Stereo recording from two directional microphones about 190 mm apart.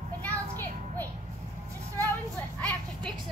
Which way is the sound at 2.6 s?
5° left (ahead or behind).